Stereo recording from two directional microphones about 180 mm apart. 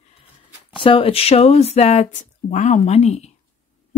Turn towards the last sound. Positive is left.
turn(degrees=35)  # may be behind; listen again after turning